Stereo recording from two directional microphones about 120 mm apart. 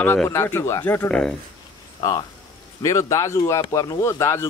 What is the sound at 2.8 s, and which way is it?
Speech, 30° left (ahead or behind).